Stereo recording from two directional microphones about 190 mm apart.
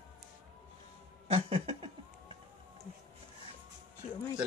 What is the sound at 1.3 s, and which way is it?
Cat, 30° right (ahead or behind).